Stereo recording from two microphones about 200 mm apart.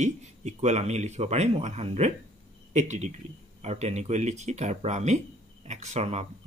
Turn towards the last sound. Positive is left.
turn(degrees=-35)  # may be behind; listen again after turning